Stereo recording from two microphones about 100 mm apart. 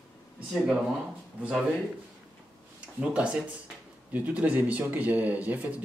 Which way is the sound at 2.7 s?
10° right (ahead or behind).